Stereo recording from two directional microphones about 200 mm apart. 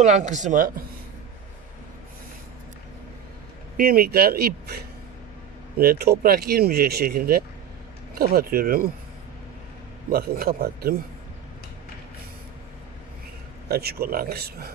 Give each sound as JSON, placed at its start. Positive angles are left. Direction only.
{"t": 0.0, "sound": "speech", "side_deg": -35}
{"t": 3.7, "sound": "speech", "side_deg": -45}
{"t": 10.0, "sound": "speech", "side_deg": -50}
{"t": 13.7, "sound": "speech", "side_deg": -50}